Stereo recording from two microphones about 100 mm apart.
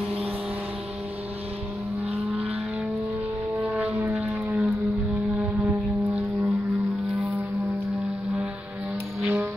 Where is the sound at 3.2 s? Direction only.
20° right (ahead or behind).